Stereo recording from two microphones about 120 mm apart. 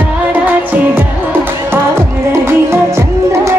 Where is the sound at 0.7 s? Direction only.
15° right (ahead or behind).